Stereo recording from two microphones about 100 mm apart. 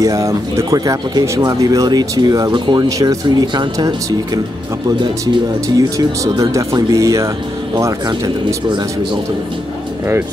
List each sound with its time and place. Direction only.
0.0 s speech: 35° right (ahead or behind); by 2.9 s 50° right (ahead or behind)
3.0 s speech: 35° right (ahead or behind)
8.6 s speech: 50° right (ahead or behind)